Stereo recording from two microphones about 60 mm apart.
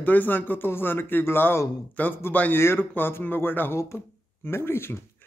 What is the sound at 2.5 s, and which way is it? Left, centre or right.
Speech, left.